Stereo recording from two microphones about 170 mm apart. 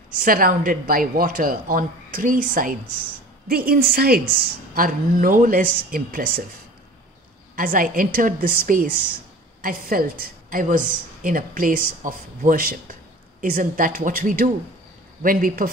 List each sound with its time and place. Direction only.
0.2 s a woman's voice: 55° right (ahead or behind)
7.5 s a woman's voice: 55° right (ahead or behind)